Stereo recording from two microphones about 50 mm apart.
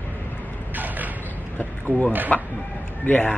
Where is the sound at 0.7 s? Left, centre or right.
Right.